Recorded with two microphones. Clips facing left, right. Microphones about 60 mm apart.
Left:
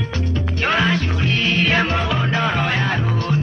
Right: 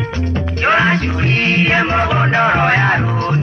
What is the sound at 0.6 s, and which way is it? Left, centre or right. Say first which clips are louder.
Music: right 5 dB; right.